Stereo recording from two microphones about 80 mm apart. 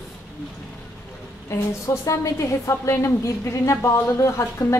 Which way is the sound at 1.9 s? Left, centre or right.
Left.